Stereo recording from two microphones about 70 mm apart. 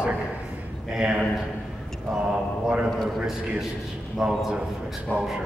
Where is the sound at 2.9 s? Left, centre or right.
Centre.